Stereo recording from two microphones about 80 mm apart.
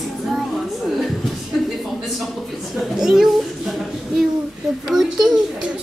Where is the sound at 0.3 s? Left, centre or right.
Centre.